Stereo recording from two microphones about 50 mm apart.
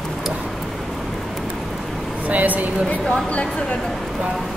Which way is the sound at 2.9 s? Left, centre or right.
Left.